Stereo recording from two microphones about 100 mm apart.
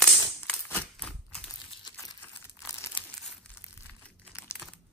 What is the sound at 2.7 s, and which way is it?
Crumpling, 25° left (ahead or behind).